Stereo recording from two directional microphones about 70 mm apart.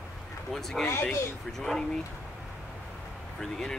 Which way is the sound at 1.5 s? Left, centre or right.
Centre.